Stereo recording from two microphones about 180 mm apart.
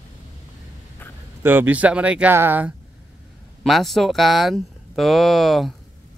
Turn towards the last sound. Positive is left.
turn(degrees=0)  # may be behind; listen again after turning